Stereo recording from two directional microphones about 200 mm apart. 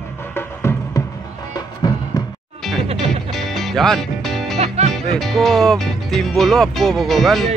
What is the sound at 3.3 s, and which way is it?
Music, centre (ahead or behind).